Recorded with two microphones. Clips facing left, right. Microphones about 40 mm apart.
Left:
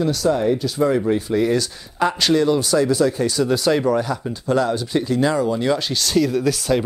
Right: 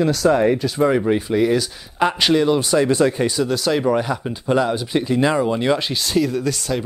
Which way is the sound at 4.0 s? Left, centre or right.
Right.